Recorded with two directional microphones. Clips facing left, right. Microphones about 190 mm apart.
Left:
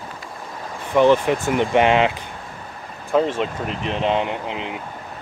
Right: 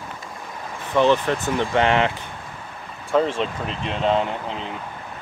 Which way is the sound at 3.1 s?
10° left (ahead or behind).